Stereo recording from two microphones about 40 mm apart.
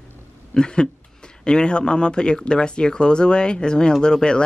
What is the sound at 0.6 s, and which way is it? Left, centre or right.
Speech, left.